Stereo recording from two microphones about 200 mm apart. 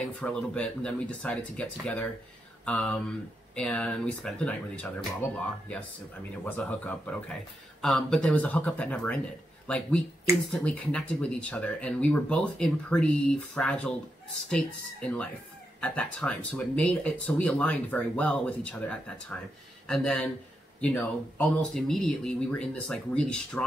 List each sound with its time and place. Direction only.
0.0 s speech: 5° left (ahead or behind)
6.4 s speech: 10° left (ahead or behind)